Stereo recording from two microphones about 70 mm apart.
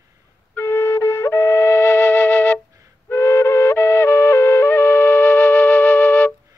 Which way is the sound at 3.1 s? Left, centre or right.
Left.